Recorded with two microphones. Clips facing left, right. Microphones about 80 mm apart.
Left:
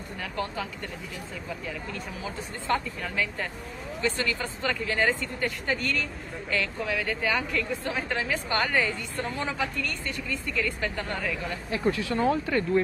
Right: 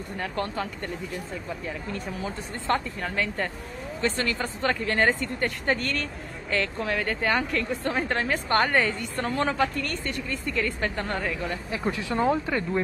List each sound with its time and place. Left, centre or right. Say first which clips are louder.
0.2 s a woman's voice: right 2 dB; right
2.2 s a woman's voice: right 2 dB; right
10.6 s speech: right 2 dB; right
11.7 s speech: left 3 dB; centre